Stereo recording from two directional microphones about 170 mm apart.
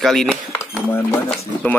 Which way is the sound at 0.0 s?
Centre (ahead or behind).